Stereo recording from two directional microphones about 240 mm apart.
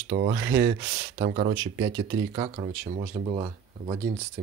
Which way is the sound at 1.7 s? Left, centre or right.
Right.